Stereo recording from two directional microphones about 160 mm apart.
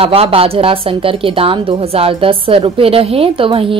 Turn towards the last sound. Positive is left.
turn(degrees=-35)  # may be behind; listen again after turning